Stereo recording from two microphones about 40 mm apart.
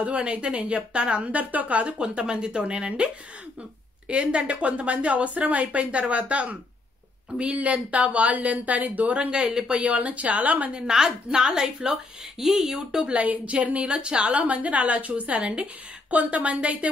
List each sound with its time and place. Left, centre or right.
0.0 s a woman's voice: right
4.1 s a woman's voice: right
10.9 s a woman's voice: right
13.1 s a woman's voice: right